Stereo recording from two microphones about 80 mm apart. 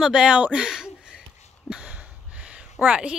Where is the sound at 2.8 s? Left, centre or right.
Centre.